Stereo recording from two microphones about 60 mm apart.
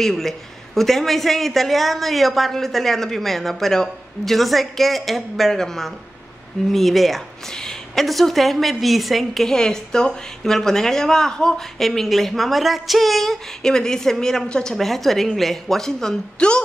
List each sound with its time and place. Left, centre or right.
0.0 s a woman's voice: centre